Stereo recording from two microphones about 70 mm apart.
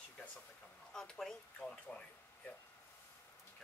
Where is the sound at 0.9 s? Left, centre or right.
Centre.